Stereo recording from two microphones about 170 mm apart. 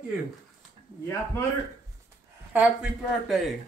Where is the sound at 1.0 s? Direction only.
15° left (ahead or behind).